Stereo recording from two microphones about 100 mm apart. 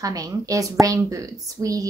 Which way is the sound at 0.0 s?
35° right (ahead or behind).